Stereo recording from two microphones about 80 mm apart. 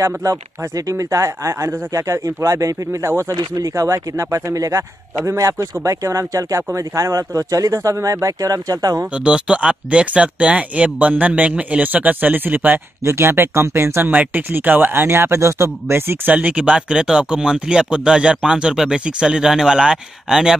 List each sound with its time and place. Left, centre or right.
0.0 s a man's voice: right
3.5 s a man's voice: right
9.1 s a man's voice: centre; by 16.3 s right
16.3 s speech: centre